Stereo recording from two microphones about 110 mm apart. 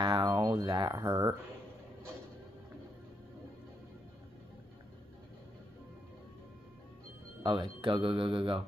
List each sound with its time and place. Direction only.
0.0 s a sound: 40° right (ahead or behind)
0.9 s speech: 30° right (ahead or behind)
7.4 s speech: 50° right (ahead or behind)